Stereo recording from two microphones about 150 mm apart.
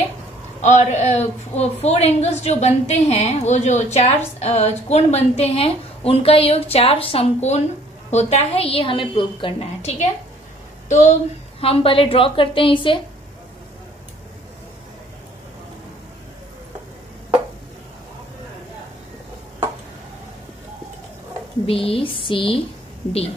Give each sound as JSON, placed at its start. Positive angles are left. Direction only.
{"t": 0.6, "sound": "a woman's voice", "side_deg": 50}
{"t": 11.6, "sound": "a woman's voice", "side_deg": 40}
{"t": 21.6, "sound": "a woman's voice", "side_deg": 40}